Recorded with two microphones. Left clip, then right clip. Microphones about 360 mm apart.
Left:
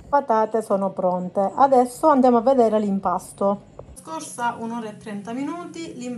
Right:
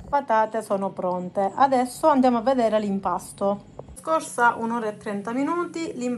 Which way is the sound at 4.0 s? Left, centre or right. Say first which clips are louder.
Right 6 dB; centre.